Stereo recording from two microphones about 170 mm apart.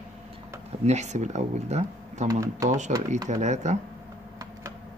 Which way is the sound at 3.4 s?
45° right (ahead or behind).